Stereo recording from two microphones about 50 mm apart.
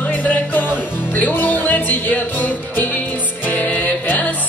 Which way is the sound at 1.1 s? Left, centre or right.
Left.